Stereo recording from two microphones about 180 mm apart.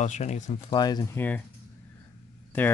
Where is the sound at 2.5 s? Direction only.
10° left (ahead or behind).